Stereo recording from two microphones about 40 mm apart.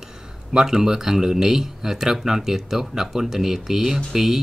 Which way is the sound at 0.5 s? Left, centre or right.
Centre.